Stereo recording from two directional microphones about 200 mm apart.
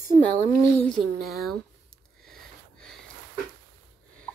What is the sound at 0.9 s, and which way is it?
Speech, centre (ahead or behind).